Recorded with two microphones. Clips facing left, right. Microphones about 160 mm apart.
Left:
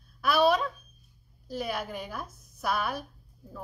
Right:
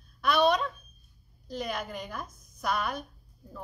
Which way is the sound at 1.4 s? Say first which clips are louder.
Left 1 dB; 5° left (ahead or behind).